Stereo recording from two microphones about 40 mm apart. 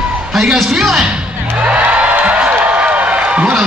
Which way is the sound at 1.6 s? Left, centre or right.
Right.